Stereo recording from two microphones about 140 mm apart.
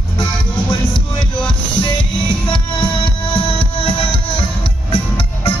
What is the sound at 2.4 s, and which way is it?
Music, 35° left (ahead or behind).